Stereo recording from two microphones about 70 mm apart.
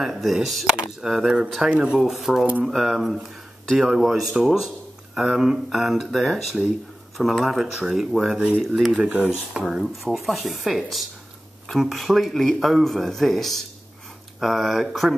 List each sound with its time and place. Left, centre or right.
0.0 s speech: centre
1.7 s speech: centre
2.0 s speech: centre